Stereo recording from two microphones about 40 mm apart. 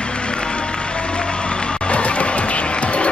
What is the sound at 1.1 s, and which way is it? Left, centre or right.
Music, left.